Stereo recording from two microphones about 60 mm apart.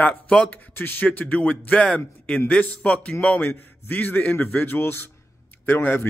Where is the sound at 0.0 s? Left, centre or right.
Centre.